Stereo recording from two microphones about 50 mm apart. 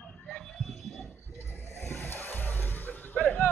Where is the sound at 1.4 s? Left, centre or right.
Left.